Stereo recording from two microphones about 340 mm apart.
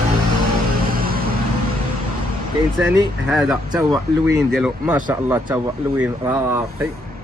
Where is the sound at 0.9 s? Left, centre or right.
Right.